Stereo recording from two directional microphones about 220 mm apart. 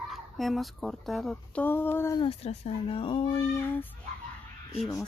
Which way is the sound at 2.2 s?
30° left (ahead or behind).